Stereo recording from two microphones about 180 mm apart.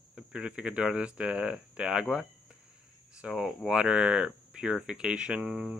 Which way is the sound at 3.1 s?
5° right (ahead or behind).